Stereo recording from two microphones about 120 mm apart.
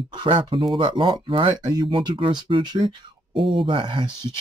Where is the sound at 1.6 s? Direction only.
35° right (ahead or behind).